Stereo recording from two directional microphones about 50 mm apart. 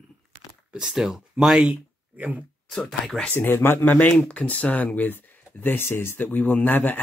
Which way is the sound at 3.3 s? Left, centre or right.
Left.